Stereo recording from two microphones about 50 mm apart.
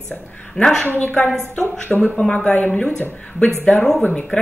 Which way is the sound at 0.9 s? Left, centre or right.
Left.